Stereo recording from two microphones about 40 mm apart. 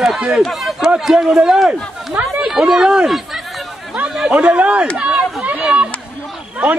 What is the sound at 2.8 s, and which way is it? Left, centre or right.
Speech, right.